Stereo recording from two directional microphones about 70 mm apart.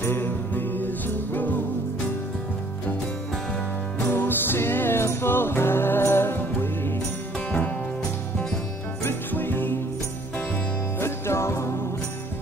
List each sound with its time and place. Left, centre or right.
0.0 s music: left
4.0 s music: left
9.3 s music: left
11.0 s music: left